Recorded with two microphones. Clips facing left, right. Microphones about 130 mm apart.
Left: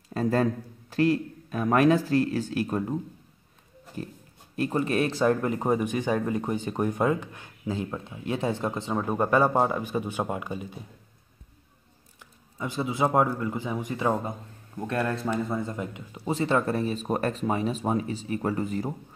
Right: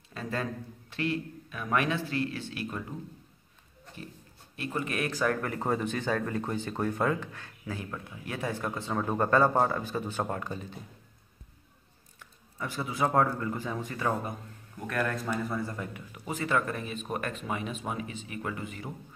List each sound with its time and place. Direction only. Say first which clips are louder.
0.1 s speech: left 10 dB; 40° left (ahead or behind); by 10.8 s 15° left (ahead or behind)
12.5 s a man's voice: left 4 dB; 20° left (ahead or behind); by 18.9 s 40° left (ahead or behind)